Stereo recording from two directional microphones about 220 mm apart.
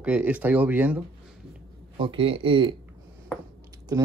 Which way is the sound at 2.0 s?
25° right (ahead or behind).